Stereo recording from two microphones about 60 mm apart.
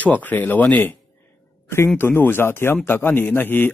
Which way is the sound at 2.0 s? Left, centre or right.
Left.